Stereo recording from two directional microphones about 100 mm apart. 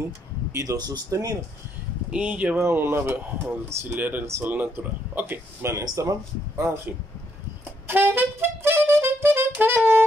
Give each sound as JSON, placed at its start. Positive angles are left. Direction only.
{"t": 0.6, "sound": "speech", "side_deg": -35}
{"t": 2.0, "sound": "speech", "side_deg": -10}
{"t": 2.6, "sound": "speech", "side_deg": -25}
{"t": 7.8, "sound": "music", "side_deg": -20}